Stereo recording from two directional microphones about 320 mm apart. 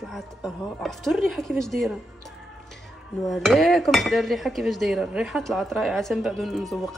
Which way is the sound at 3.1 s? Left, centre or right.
Centre.